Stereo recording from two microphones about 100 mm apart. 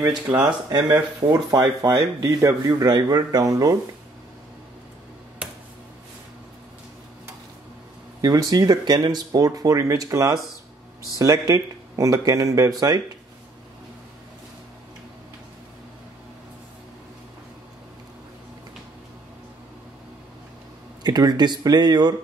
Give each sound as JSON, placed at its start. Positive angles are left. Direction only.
{"t": 0.4, "sound": "speech", "side_deg": -40}
{"t": 8.2, "sound": "speech", "side_deg": -40}
{"t": 21.0, "sound": "speech", "side_deg": -45}